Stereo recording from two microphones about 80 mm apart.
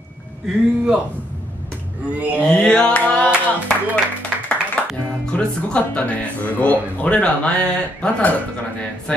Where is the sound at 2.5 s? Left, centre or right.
Centre.